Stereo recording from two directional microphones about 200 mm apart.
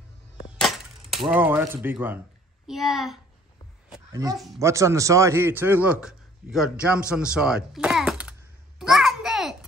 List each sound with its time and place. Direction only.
0.6 s music: centre (ahead or behind)
2.6 s a child's voice: centre (ahead or behind)
4.1 s a man's voice: 15° right (ahead or behind); by 9.7 s centre (ahead or behind)